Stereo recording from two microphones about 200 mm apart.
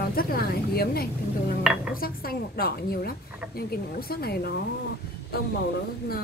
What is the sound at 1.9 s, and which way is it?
A woman's voice, 45° left (ahead or behind).